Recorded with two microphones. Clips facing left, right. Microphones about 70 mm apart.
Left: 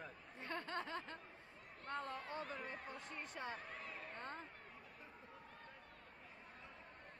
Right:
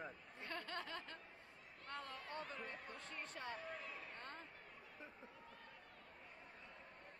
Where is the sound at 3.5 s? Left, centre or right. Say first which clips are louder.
Even; left.